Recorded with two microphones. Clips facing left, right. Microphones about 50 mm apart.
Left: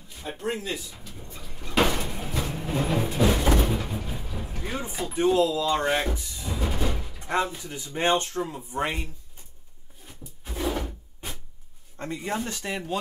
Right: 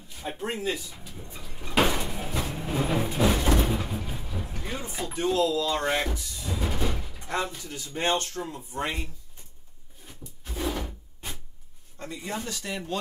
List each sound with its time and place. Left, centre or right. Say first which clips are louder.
0.1 s a sound: left 2 dB; centre
3.2 s music: left 1 dB; centre
3.5 s vehicle: left 1 dB; centre
5.1 s speech: left 3 dB; centre
6.1 s music: even; centre
6.6 s a sound: left 1 dB; centre
7.2 s speech: left 4 dB; centre
10.0 s drawer open or close: left 2 dB; centre
12.0 s speech: left 4 dB; left